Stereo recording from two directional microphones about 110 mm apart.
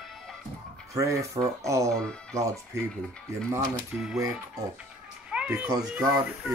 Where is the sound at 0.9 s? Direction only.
30° right (ahead or behind).